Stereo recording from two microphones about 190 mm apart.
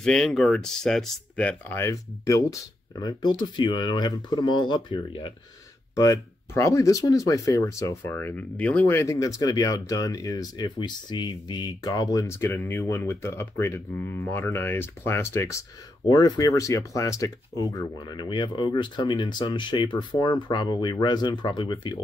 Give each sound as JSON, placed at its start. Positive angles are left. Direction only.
{"t": 0.0, "sound": "speech", "side_deg": 5}